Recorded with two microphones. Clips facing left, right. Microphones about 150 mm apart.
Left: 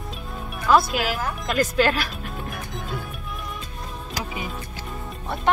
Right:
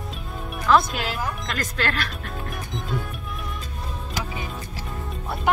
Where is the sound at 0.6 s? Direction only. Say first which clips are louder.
Left 1 dB; 5° left (ahead or behind).